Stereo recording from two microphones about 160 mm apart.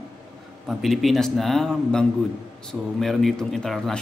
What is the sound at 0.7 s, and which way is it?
A man's voice, centre (ahead or behind).